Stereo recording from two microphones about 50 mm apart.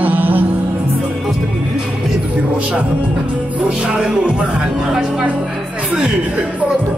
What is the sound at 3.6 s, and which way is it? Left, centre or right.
Music, centre.